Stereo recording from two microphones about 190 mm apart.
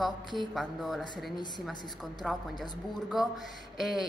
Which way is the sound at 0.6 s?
Centre (ahead or behind).